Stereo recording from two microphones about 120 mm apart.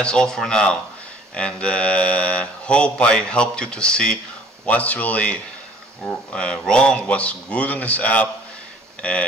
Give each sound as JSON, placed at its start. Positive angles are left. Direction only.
{"t": 0.0, "sound": "speech", "side_deg": 5}